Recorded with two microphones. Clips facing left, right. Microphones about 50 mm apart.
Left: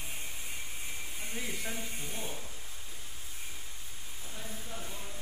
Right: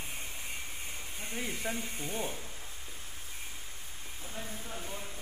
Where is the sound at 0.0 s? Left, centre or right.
Right.